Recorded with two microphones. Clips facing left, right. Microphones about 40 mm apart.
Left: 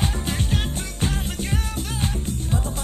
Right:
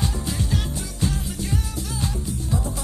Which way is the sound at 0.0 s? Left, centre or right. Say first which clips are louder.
Left 1 dB; left.